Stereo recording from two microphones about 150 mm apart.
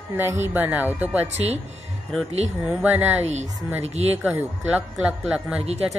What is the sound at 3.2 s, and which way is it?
Speech, 50° right (ahead or behind).